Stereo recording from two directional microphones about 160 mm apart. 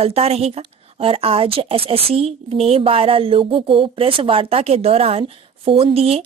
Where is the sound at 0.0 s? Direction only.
40° right (ahead or behind).